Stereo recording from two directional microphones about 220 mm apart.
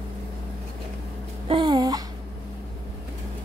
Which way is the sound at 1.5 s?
20° right (ahead or behind).